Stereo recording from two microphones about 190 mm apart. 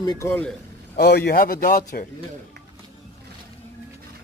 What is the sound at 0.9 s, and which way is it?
Speech, 55° left (ahead or behind).